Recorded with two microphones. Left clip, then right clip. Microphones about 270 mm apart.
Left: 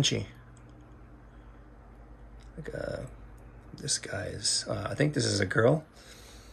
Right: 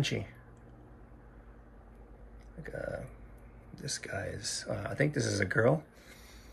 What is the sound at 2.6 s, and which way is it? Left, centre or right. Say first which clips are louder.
Speech: left 3 dB; centre.